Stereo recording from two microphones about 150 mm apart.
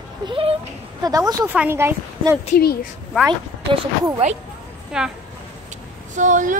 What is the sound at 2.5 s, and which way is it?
Speech, 90° left.